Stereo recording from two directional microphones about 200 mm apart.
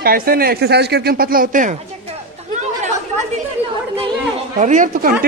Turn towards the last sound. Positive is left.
turn(degrees=-40)  # may be behind; listen again after turning